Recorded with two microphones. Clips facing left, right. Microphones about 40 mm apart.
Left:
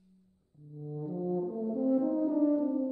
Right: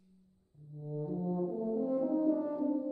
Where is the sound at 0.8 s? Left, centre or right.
Centre.